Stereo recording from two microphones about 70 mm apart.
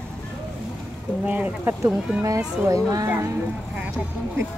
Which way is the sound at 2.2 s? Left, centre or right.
Right.